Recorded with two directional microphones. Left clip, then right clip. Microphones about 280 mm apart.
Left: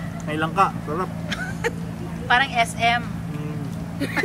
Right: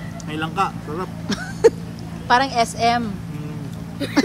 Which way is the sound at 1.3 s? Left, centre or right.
Centre.